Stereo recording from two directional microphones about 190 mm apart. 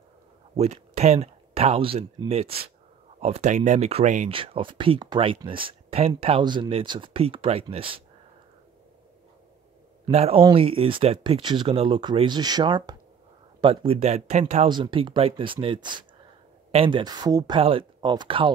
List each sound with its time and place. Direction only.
0.6 s speech: 35° right (ahead or behind)
4.3 s speech: 30° right (ahead or behind)
10.1 s speech: 30° right (ahead or behind)
14.7 s speech: 25° right (ahead or behind)